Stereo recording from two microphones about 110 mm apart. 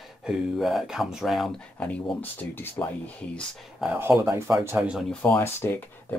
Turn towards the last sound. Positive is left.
turn(degrees=20)  # may be behind; listen again after turning